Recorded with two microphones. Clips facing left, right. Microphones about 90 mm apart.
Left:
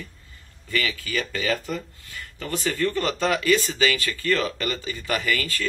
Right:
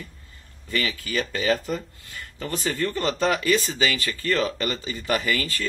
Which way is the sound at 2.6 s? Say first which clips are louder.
Left 1 dB; 25° right (ahead or behind).